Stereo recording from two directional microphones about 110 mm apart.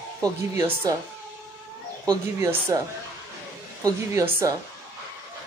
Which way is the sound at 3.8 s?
30° right (ahead or behind).